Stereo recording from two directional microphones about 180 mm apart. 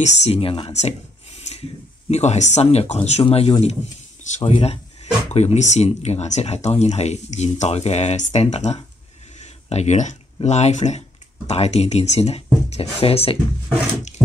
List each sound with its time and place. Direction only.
0.0 s speech: 35° left (ahead or behind)
2.0 s speech: 40° left (ahead or behind)